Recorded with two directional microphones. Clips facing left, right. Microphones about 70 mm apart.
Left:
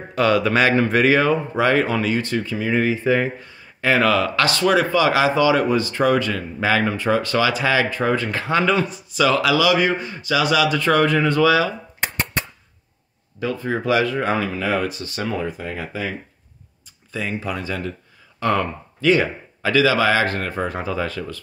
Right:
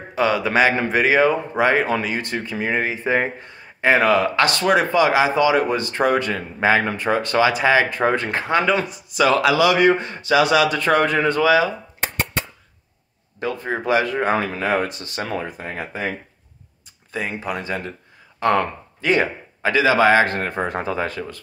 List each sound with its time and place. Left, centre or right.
0.1 s speech: centre
13.4 s speech: right
15.4 s speech: right
17.1 s speech: right